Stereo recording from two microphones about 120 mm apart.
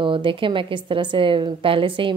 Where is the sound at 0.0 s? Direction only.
45° right (ahead or behind).